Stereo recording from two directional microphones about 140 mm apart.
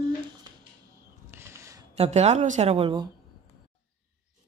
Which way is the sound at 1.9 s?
50° right (ahead or behind).